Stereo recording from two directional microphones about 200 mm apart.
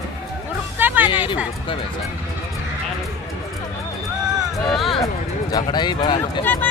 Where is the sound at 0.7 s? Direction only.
10° right (ahead or behind).